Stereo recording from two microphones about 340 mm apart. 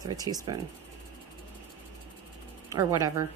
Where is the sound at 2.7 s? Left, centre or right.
Centre.